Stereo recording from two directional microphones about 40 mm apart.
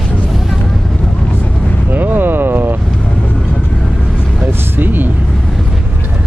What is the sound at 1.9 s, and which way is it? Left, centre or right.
Vehicle, right.